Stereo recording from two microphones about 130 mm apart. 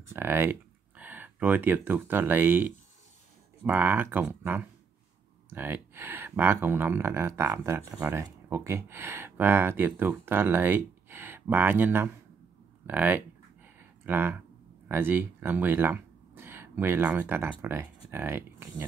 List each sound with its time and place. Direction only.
0.1 s speech: 15° right (ahead or behind)
13.7 s a sound: 15° right (ahead or behind)
14.9 s speech: 15° right (ahead or behind)